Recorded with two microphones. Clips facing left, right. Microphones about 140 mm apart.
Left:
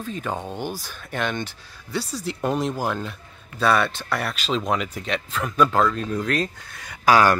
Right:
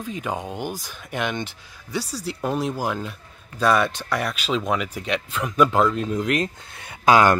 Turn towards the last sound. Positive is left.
turn(degrees=-20)  # may be behind; listen again after turning